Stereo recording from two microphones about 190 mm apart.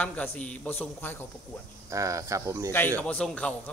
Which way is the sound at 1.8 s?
15° right (ahead or behind).